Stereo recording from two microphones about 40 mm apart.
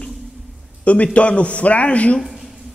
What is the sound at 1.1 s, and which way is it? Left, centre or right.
A man's voice, left.